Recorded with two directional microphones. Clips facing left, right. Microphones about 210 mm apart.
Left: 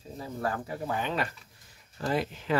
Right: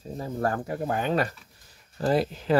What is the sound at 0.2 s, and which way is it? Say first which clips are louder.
Speech: right 5 dB; 45° right (ahead or behind).